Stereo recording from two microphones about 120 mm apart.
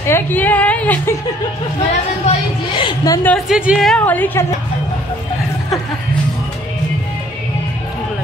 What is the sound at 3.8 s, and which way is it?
Speech, 10° left (ahead or behind).